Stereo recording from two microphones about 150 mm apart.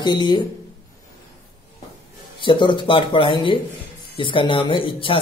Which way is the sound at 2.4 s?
30° left (ahead or behind).